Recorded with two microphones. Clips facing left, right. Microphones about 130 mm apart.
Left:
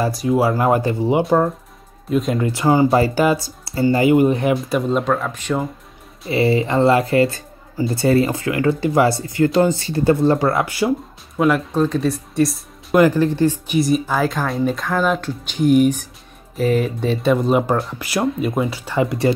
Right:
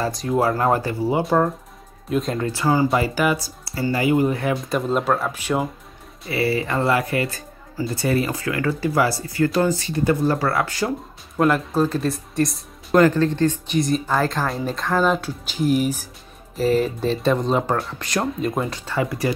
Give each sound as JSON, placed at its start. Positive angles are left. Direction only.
{"t": 0.0, "sound": "speech", "side_deg": 5}
{"t": 1.2, "sound": "speech", "side_deg": 0}
{"t": 2.5, "sound": "speech", "side_deg": 20}
{"t": 3.0, "sound": "speech", "side_deg": 30}
{"t": 4.6, "sound": "speech", "side_deg": 0}
{"t": 6.2, "sound": "speech", "side_deg": 25}
{"t": 11.3, "sound": "speech", "side_deg": 0}
{"t": 13.0, "sound": "speech", "side_deg": 15}
{"t": 18.9, "sound": "speech", "side_deg": 25}